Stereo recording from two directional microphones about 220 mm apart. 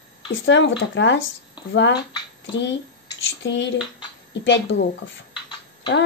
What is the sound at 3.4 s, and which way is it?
Speech, 55° left (ahead or behind).